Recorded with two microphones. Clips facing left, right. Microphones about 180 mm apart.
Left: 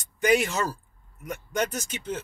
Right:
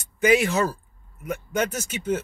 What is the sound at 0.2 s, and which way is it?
Speech, centre (ahead or behind).